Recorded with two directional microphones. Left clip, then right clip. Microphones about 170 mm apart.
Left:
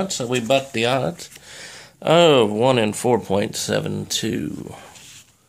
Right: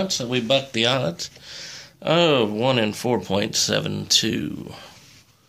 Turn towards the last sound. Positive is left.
turn(degrees=10)  # may be behind; listen again after turning